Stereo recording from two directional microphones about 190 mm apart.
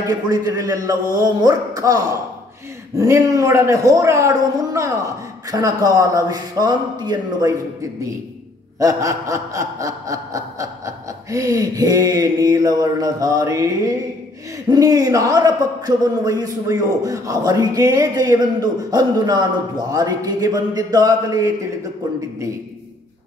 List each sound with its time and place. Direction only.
0.3 s a man's voice: 20° right (ahead or behind)
3.0 s snicker: 20° right (ahead or behind)
8.7 s snicker: 15° right (ahead or behind)
14.7 s a man's voice: 20° right (ahead or behind)